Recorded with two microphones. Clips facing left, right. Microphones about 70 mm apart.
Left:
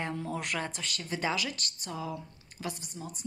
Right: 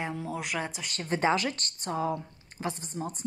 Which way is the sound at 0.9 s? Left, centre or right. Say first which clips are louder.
Right 7 dB; right.